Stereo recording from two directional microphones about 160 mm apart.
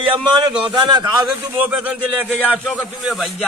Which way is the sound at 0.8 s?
25° right (ahead or behind).